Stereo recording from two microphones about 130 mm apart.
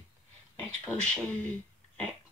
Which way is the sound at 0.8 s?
5° left (ahead or behind).